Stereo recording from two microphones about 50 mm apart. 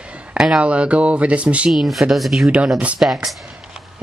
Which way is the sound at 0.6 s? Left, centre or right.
Right.